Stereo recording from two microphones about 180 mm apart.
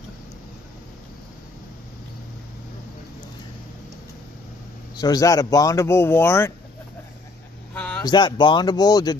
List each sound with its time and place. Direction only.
4.9 s speech: 20° left (ahead or behind)
7.7 s a sound: 10° left (ahead or behind)
8.0 s speech: 25° left (ahead or behind)